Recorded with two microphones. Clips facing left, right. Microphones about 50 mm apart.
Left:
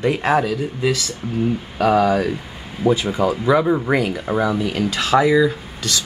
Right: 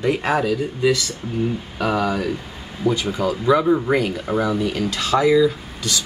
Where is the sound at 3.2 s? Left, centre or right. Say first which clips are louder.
Even; left.